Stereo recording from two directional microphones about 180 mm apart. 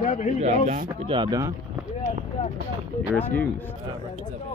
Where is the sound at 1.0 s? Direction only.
25° right (ahead or behind).